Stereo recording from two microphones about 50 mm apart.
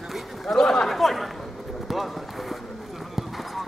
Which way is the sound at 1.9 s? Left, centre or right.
Centre.